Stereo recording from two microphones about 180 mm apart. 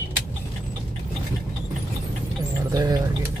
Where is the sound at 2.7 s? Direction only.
20° right (ahead or behind).